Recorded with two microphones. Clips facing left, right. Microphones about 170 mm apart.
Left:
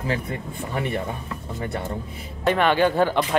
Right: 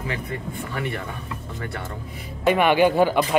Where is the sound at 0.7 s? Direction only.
25° left (ahead or behind).